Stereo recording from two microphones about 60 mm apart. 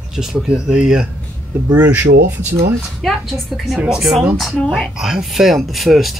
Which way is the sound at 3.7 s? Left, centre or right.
Centre.